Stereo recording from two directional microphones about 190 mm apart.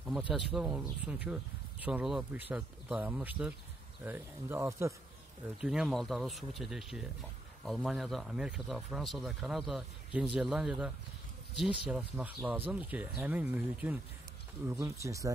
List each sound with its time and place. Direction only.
0.0 s speech: 5° right (ahead or behind)
5.6 s speech: 5° right (ahead or behind)